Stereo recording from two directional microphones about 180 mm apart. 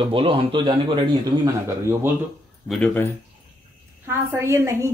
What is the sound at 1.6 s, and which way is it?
Speech, 15° right (ahead or behind).